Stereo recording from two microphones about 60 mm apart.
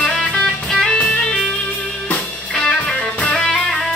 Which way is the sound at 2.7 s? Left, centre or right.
Centre.